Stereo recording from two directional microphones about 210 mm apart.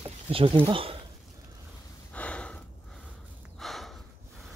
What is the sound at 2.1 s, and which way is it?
Gasp, 5° left (ahead or behind).